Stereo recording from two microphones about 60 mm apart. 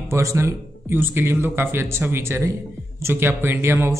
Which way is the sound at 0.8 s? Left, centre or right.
Right.